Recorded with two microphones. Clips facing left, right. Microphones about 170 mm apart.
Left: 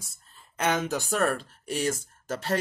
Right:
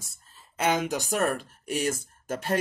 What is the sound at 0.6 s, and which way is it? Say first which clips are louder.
Speech: right 1 dB; 10° right (ahead or behind).